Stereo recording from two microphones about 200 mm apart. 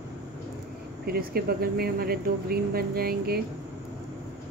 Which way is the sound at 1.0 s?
50° right (ahead or behind).